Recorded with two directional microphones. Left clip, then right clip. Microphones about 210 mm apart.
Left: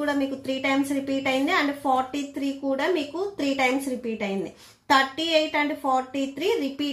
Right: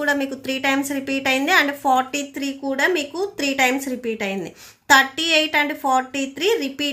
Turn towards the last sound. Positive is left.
turn(degrees=-40)  # may be behind; listen again after turning